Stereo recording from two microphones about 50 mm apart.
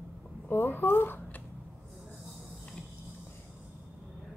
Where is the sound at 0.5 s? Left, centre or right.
Left.